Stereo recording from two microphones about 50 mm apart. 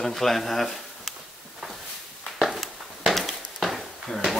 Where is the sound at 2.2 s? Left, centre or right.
Centre.